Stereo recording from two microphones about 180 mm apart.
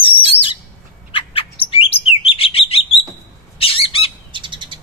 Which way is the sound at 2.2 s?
30° left (ahead or behind).